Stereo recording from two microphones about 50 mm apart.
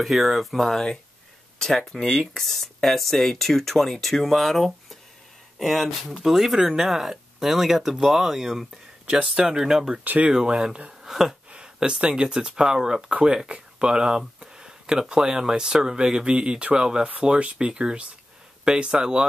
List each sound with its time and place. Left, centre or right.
0.0 s speech: centre
9.1 s speech: centre
10.0 s speech: right
10.3 s speech: centre